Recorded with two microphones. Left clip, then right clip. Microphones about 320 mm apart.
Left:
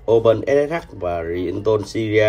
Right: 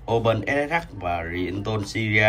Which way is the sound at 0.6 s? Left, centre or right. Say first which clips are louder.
Left 3 dB; centre.